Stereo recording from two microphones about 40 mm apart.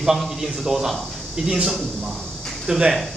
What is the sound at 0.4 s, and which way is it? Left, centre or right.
Speech, centre.